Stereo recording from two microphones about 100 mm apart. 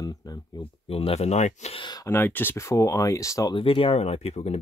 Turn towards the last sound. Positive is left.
turn(degrees=90)